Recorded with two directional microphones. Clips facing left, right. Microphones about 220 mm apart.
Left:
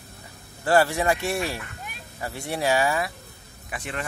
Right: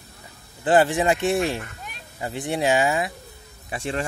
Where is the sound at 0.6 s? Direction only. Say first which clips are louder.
Right 2 dB; 20° right (ahead or behind).